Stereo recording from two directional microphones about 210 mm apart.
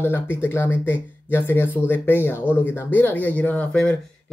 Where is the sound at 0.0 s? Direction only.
10° left (ahead or behind).